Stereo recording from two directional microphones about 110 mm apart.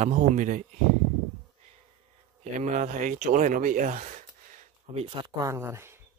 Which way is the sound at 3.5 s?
90° right.